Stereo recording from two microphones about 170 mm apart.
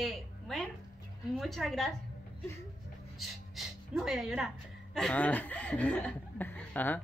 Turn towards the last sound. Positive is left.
turn(degrees=10)  # may be behind; listen again after turning